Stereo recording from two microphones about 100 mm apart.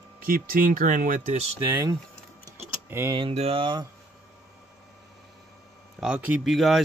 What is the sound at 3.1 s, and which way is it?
Speech, 75° right (ahead or behind).